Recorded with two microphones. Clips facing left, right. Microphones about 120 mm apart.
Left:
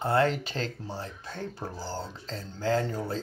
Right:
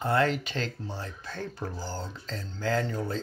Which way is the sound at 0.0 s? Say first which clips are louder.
Left 1 dB; 30° left (ahead or behind).